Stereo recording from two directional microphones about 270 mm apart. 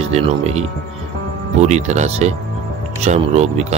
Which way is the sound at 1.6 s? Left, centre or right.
Right.